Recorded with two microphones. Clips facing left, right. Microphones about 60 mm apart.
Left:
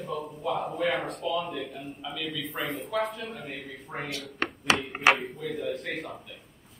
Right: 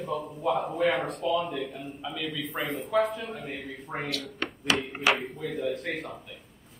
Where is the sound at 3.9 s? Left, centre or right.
Centre.